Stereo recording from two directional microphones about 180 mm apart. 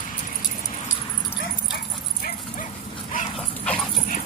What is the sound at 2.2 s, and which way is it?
Dog, 45° left (ahead or behind).